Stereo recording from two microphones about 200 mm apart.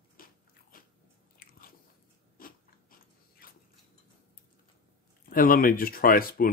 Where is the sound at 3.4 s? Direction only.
45° left (ahead or behind).